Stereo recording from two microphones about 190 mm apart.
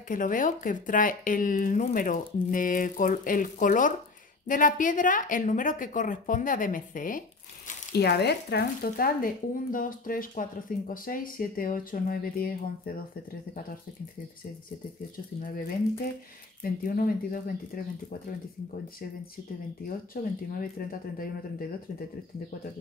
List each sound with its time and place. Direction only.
0.1 s a woman's voice: 45° left (ahead or behind)
16.6 s a woman's voice: 50° left (ahead or behind)
20.1 s a woman's voice: 50° left (ahead or behind)